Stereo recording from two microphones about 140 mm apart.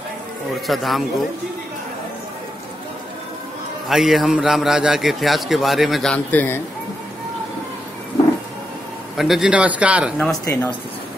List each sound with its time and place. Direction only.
0.7 s a man's voice: centre (ahead or behind)
3.9 s a man's voice: centre (ahead or behind)
6.1 s speech: 15° left (ahead or behind)
9.1 s a man's voice: centre (ahead or behind)
10.1 s speech: 10° left (ahead or behind)